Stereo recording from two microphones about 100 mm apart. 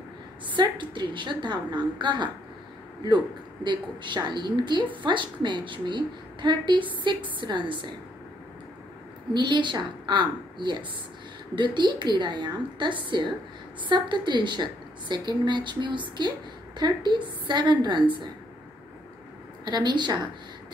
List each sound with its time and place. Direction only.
0.6 s a woman's voice: 50° right (ahead or behind)
3.6 s a woman's voice: 50° right (ahead or behind)
9.3 s a woman's voice: 50° right (ahead or behind)
19.6 s a woman's voice: 45° right (ahead or behind)